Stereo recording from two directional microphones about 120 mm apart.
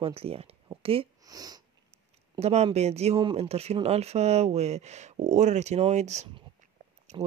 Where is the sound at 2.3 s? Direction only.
60° right (ahead or behind).